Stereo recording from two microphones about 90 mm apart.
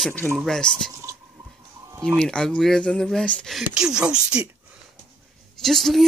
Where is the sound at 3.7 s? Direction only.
10° right (ahead or behind).